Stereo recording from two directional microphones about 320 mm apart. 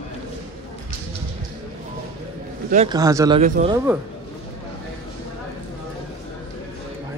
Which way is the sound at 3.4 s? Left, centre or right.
Right.